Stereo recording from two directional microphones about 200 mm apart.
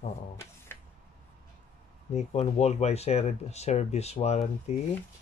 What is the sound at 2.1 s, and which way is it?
Speech, 30° left (ahead or behind).